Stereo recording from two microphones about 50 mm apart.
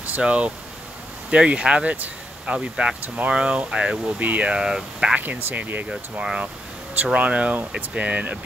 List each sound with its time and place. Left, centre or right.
0.1 s speech: right
2.7 s speech: centre
4.2 s speech: right
4.5 s speech: centre
5.5 s speech: right
7.0 s speech: right